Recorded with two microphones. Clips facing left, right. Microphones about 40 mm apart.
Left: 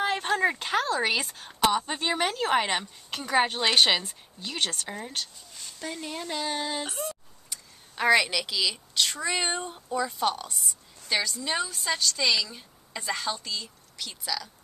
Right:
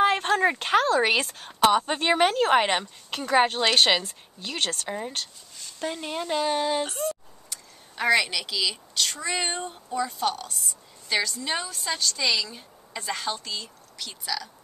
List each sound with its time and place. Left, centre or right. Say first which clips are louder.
0.0 s a sound: right 4 dB; centre
0.9 s speech: right 4 dB; right
2.8 s speech: right 3 dB; centre
4.9 s speech: right 3 dB; centre
6.9 s a woman's voice: right 5 dB; centre